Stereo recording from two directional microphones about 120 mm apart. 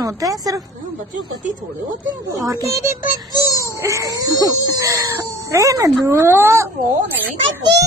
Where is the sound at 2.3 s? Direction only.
30° right (ahead or behind).